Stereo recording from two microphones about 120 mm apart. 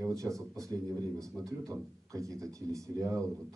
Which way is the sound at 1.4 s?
30° right (ahead or behind).